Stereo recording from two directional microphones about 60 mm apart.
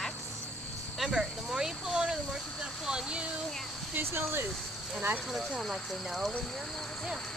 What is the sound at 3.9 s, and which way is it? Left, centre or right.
Speech, right.